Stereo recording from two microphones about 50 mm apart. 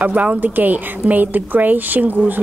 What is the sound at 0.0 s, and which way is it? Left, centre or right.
Speech, right.